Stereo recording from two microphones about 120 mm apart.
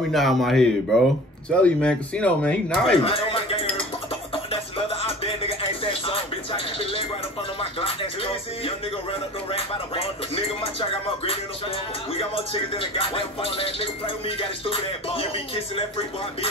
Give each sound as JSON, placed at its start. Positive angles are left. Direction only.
{"t": 0.1, "sound": "a man's voice", "side_deg": 0}
{"t": 3.1, "sound": "a sound", "side_deg": 50}
{"t": 4.3, "sound": "music", "side_deg": 50}